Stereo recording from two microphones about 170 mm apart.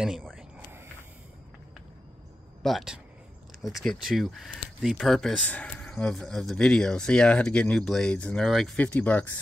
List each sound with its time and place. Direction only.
0.0 s speech: centre (ahead or behind)
2.6 s speech: centre (ahead or behind)